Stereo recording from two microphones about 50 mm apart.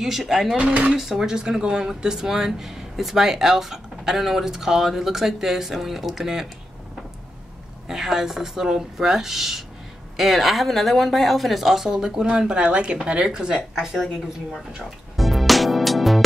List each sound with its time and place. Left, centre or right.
0.0 s speech: centre
0.6 s speech: right
0.9 s speech: centre
7.9 s speech: centre
15.1 s music: centre